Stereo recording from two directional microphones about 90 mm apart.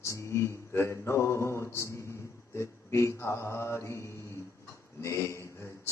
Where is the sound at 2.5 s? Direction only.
30° left (ahead or behind).